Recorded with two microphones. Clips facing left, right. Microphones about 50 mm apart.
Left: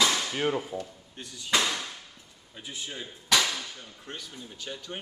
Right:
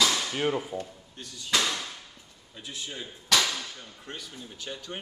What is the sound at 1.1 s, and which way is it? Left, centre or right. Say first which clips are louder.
A man's voice: left 1 dB; centre.